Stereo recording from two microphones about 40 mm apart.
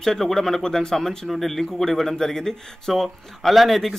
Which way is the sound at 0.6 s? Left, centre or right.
Centre.